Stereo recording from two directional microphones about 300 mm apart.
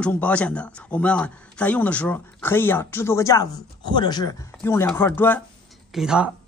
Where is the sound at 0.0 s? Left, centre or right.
Centre.